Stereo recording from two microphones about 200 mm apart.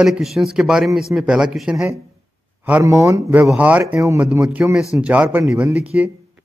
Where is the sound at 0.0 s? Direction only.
Centre (ahead or behind).